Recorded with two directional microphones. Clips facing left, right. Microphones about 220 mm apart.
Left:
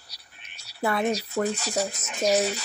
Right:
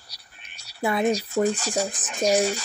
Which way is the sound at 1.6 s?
Centre (ahead or behind).